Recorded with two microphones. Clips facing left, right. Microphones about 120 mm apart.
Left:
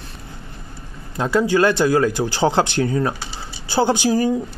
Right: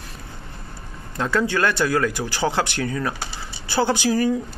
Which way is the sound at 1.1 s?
15° left (ahead or behind).